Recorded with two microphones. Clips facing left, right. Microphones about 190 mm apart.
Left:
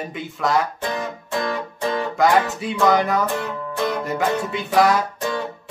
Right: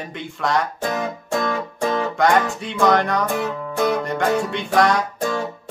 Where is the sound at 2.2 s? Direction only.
5° left (ahead or behind).